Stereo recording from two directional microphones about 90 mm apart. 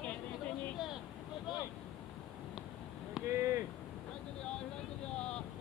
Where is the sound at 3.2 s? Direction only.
30° right (ahead or behind).